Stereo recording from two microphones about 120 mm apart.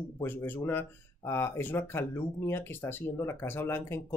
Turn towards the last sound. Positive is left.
turn(degrees=20)  # may be behind; listen again after turning